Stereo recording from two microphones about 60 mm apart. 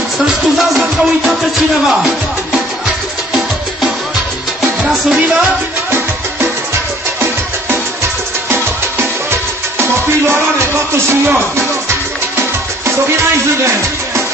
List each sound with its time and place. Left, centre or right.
0.6 s music: centre
8.5 s music: right